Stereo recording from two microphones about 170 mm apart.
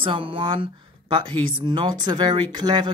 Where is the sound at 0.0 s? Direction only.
30° right (ahead or behind).